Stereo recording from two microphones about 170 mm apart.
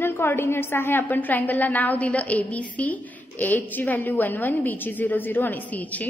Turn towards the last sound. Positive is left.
turn(degrees=10)  # may be behind; listen again after turning